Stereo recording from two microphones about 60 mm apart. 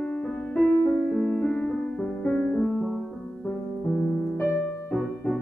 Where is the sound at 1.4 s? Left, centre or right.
Left.